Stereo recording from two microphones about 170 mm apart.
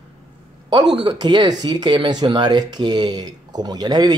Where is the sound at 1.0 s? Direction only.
25° right (ahead or behind).